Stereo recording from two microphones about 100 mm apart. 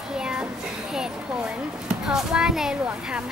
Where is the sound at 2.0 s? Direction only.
5° right (ahead or behind).